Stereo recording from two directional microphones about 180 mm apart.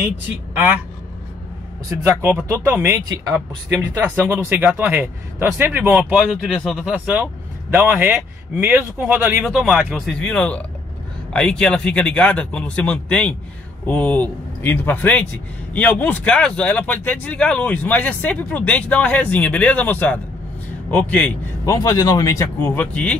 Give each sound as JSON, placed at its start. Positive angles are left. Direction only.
{"t": 1.9, "sound": "a man's voice", "side_deg": -10}
{"t": 21.6, "sound": "speech", "side_deg": 20}